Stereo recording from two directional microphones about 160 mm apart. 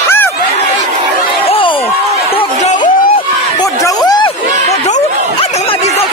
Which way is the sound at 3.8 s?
25° left (ahead or behind).